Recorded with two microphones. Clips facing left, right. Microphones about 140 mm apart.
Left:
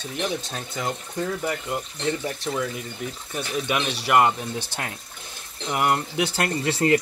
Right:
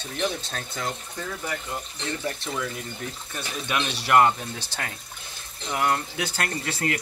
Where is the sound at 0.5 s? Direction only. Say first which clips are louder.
Left 2 dB; 15° left (ahead or behind).